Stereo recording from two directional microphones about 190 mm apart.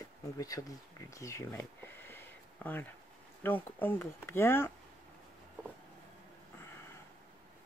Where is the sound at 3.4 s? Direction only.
10° left (ahead or behind).